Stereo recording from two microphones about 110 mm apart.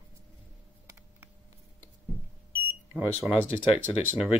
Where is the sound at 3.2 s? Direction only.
5° right (ahead or behind).